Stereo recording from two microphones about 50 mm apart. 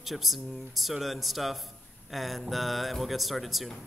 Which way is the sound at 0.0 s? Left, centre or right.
Centre.